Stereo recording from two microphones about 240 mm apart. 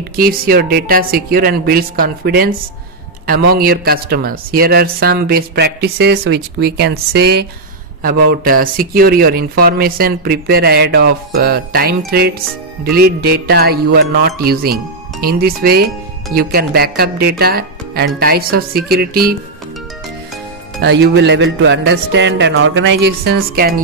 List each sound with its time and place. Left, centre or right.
0.1 s speech: right
20.8 s speech: right